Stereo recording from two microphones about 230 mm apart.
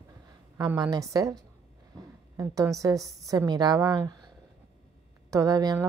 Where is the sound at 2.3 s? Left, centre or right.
Centre.